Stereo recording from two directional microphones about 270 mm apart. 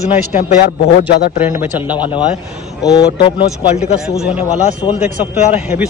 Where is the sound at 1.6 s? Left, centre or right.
Centre.